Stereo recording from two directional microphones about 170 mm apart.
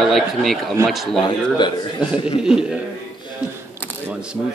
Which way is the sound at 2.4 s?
5° right (ahead or behind).